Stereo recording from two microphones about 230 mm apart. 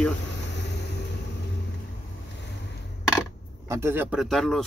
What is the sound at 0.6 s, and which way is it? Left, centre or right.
Vehicle, left.